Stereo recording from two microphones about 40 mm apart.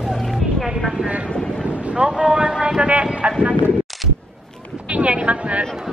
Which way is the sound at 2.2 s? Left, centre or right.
Right.